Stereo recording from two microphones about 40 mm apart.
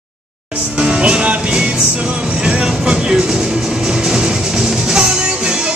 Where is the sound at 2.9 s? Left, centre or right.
Centre.